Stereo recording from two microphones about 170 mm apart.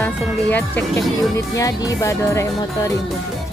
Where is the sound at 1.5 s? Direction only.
20° left (ahead or behind).